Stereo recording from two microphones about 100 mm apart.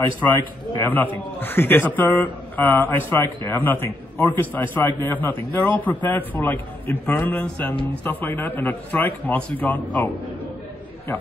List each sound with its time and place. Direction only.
0.2 s a man's voice: 20° left (ahead or behind)